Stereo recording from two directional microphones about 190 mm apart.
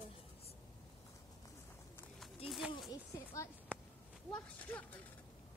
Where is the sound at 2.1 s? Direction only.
Centre (ahead or behind).